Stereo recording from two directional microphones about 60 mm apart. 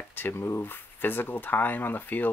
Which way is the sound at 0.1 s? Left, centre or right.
Left.